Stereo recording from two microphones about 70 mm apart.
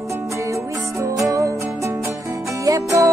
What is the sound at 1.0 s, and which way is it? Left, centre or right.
Music, right.